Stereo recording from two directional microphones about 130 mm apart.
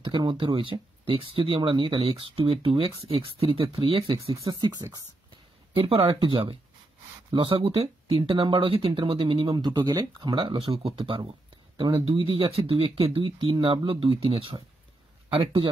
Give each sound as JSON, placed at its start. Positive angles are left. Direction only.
{"t": 0.0, "sound": "speech", "side_deg": -35}
{"t": 5.8, "sound": "speech", "side_deg": -45}